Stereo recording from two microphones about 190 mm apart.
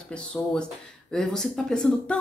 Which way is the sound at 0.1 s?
5° left (ahead or behind).